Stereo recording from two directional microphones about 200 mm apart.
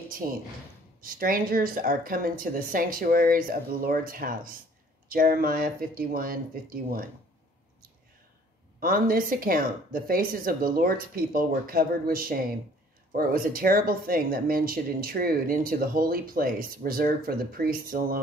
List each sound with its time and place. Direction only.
0.2 s speech: 40° right (ahead or behind)
8.7 s speech: 45° right (ahead or behind)